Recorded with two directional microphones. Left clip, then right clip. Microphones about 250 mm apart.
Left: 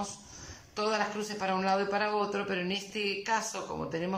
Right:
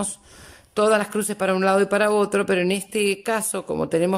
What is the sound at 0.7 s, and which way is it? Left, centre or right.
A man's voice, right.